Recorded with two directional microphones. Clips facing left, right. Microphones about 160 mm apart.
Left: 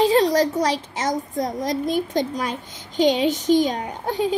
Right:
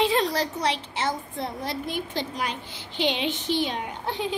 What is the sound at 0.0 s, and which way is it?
A child's voice, 40° left (ahead or behind).